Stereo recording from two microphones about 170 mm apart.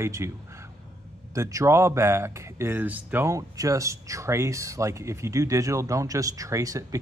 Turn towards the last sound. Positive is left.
turn(degrees=-20)  # may be behind; listen again after turning